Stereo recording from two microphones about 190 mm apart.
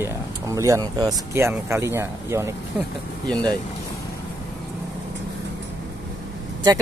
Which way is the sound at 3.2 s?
5° left (ahead or behind).